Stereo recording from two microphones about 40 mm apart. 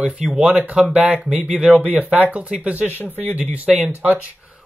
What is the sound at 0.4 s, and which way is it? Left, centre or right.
Speech, right.